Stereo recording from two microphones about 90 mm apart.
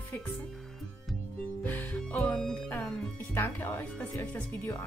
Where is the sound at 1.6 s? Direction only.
20° left (ahead or behind).